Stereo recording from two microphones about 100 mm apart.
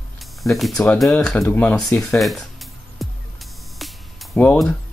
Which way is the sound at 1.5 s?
15° left (ahead or behind).